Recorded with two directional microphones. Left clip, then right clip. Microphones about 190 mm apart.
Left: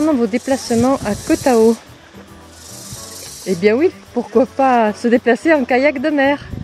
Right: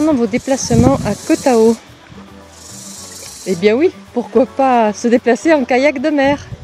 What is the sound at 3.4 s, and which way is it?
Speech, centre (ahead or behind).